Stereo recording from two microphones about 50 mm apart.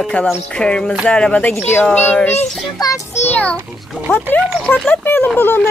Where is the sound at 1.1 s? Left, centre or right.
Left.